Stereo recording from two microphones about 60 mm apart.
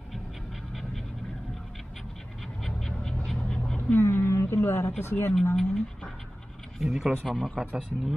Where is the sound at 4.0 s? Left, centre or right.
Left.